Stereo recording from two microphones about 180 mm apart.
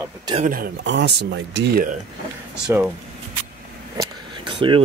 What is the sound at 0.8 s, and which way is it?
Speech, 80° right.